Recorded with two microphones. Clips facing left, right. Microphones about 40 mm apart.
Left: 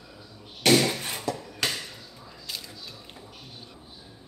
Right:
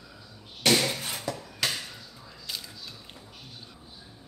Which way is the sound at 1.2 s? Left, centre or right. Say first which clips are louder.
Left 2 dB; centre.